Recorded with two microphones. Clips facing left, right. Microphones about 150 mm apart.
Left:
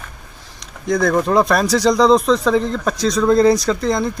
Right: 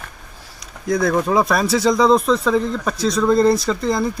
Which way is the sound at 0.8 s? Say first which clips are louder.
Left 2 dB; 5° right (ahead or behind).